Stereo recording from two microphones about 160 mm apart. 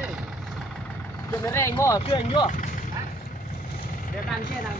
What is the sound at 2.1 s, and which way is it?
Speech, 30° left (ahead or behind).